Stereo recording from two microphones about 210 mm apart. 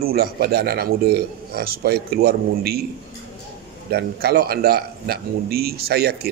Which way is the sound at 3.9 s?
50° right (ahead or behind).